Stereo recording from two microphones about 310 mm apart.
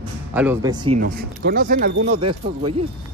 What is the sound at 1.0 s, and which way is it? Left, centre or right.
Speech, right.